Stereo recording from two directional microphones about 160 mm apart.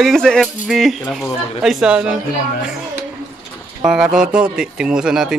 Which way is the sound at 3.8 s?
5° right (ahead or behind).